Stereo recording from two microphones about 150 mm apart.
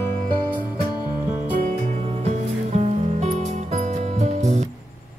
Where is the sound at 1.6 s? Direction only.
55° right (ahead or behind).